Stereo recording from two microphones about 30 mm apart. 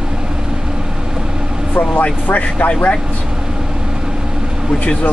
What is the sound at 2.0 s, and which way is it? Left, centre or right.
Speech, left.